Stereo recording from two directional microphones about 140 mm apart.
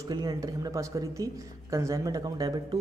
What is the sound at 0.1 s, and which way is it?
A man's voice, 30° right (ahead or behind).